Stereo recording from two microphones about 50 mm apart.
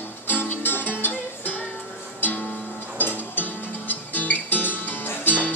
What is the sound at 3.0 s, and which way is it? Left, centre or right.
Music, left.